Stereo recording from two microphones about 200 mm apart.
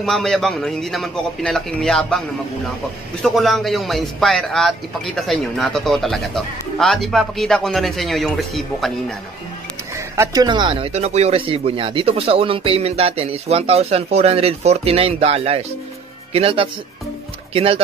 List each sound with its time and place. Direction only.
0.0 s a man's voice: centre (ahead or behind)
9.9 s speech: 15° right (ahead or behind); by 17.8 s 30° right (ahead or behind)